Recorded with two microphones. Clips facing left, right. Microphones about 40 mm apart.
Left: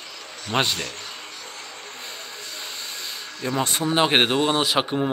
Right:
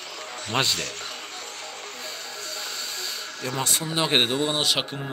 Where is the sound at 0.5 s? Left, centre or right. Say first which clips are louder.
Left 2 dB; centre.